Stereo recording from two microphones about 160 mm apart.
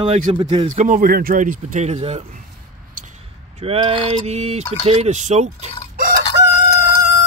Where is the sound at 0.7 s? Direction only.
55° right (ahead or behind).